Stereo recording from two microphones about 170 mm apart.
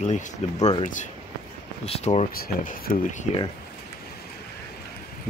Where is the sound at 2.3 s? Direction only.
60° left (ahead or behind).